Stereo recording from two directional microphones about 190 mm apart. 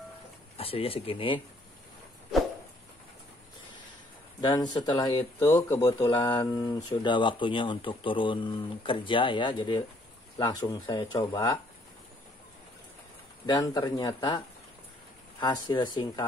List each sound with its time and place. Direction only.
0.6 s speech: 30° left (ahead or behind)
4.4 s speech: 20° left (ahead or behind)
13.5 s speech: 20° left (ahead or behind)
15.4 s speech: 20° left (ahead or behind)